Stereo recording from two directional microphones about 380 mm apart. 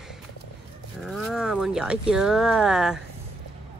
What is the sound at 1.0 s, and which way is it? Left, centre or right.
Speech, centre.